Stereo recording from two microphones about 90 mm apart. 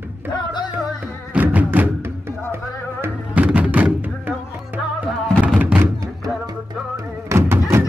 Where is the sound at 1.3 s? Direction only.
20° right (ahead or behind).